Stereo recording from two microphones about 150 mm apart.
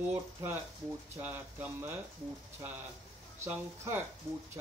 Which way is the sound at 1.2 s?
15° right (ahead or behind).